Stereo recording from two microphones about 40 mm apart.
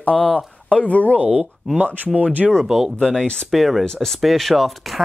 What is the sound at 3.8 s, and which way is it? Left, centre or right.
Speech, centre.